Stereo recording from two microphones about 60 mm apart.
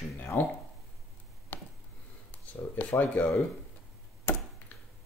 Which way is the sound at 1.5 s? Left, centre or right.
Left.